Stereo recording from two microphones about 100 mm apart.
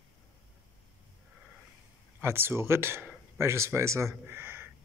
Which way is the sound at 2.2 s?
25° right (ahead or behind).